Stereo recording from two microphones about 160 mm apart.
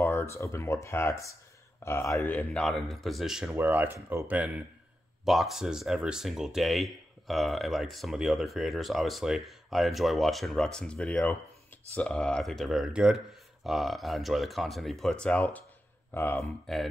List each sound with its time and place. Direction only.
0.0 s speech: 15° left (ahead or behind)
2.3 s speech: 5° left (ahead or behind)